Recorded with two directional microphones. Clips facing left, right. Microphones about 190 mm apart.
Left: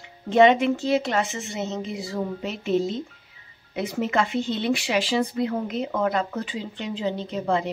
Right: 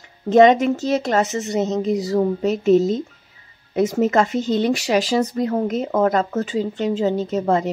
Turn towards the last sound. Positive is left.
turn(degrees=-45)  # may be behind; listen again after turning